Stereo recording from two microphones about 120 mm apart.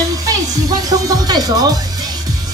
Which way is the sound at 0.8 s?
30° right (ahead or behind).